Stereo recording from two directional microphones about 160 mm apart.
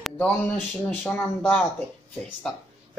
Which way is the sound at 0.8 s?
10° left (ahead or behind).